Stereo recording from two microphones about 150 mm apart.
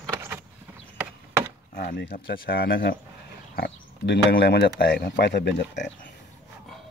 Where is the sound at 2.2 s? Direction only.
90° left.